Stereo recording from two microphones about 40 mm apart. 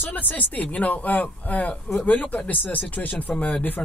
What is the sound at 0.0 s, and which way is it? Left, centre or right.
A man's voice, left.